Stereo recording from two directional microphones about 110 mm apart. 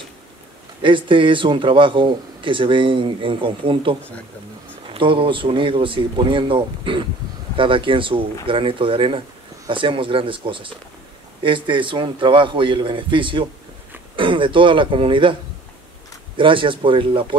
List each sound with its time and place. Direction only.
0.8 s a man's voice: 50° right (ahead or behind)
16.3 s a man's voice: 50° right (ahead or behind)